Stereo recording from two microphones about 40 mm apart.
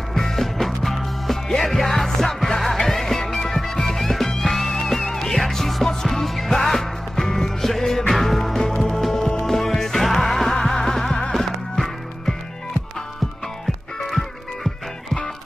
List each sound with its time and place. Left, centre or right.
0.1 s music: centre